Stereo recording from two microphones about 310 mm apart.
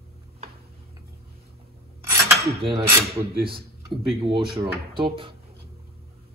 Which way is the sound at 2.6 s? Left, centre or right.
Centre.